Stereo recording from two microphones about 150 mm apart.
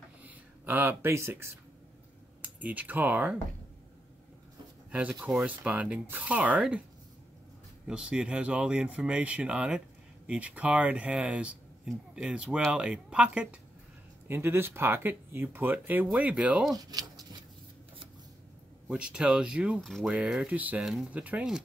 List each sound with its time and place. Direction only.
0.2 s speech: 10° right (ahead or behind)
5.2 s speech: 5° right (ahead or behind)
7.8 s speech: 5° right (ahead or behind)
16.9 s speech: 25° right (ahead or behind)
18.9 s speech: 5° right (ahead or behind)